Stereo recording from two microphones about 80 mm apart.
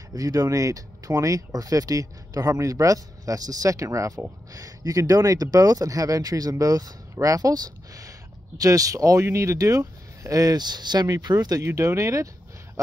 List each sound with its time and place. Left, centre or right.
0.1 s speech: right